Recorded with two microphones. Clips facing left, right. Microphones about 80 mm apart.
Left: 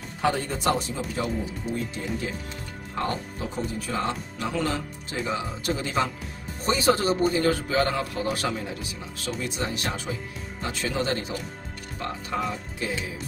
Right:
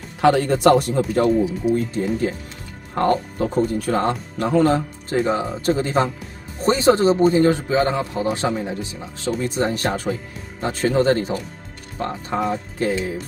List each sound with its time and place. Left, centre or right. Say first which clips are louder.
0.2 s speech: right 10 dB; right
1.7 s a man's voice: right 9 dB; right